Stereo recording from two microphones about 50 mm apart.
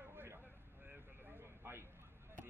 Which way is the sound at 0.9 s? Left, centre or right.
Right.